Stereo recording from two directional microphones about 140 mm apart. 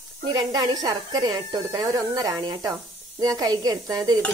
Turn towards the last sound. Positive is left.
turn(degrees=-25)  # may be behind; listen again after turning